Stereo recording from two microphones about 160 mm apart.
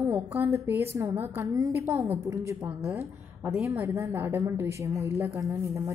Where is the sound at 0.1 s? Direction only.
15° right (ahead or behind).